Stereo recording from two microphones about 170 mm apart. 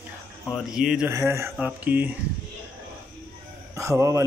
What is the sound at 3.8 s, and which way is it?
Speech, 15° right (ahead or behind).